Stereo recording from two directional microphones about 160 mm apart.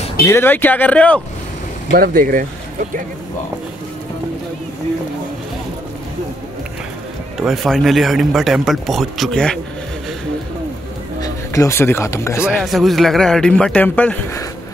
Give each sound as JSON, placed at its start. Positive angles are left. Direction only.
{"t": 0.3, "sound": "speech", "side_deg": 15}
{"t": 1.9, "sound": "speech", "side_deg": -65}
{"t": 7.3, "sound": "speech", "side_deg": 0}
{"t": 11.1, "sound": "speech", "side_deg": 20}
{"t": 12.5, "sound": "speech", "side_deg": 0}